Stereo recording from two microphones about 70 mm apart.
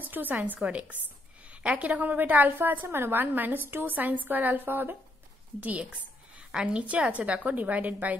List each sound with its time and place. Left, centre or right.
0.1 s a woman's voice: right